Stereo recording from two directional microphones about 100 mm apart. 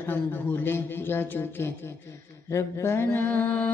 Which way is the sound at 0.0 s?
25° left (ahead or behind).